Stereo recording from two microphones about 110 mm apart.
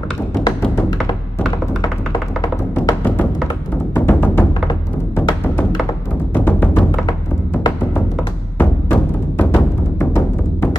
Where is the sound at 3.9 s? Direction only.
20° left (ahead or behind).